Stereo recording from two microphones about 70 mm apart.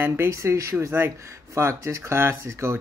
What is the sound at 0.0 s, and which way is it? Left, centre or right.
Speech, right.